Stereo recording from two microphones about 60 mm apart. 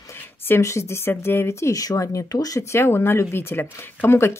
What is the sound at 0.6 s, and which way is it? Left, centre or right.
Speech, left.